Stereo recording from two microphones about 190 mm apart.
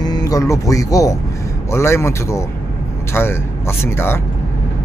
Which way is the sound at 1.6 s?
15° left (ahead or behind).